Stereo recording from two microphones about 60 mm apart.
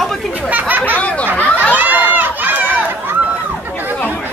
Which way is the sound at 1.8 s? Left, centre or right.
Right.